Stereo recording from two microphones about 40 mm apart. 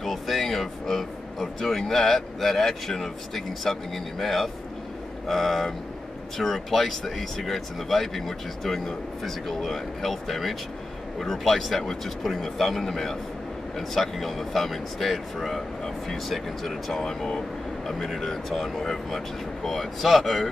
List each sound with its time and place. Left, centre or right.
0.0 s speech: centre
17.8 s speech: centre